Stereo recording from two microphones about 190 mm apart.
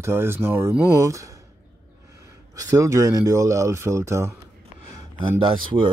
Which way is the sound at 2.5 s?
15° right (ahead or behind).